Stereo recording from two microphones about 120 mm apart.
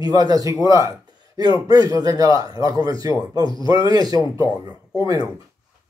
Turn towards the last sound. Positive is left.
turn(degrees=-30)  # may be behind; listen again after turning